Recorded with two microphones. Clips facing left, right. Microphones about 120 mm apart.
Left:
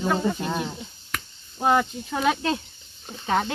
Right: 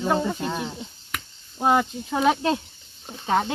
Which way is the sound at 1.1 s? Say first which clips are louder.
Left 1 dB; 15° right (ahead or behind).